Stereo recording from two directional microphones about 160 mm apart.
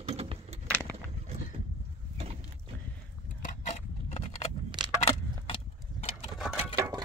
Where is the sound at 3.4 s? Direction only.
45° left (ahead or behind).